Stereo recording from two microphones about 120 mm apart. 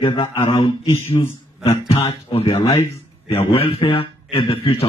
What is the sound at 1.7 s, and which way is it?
A man's voice, 55° left (ahead or behind).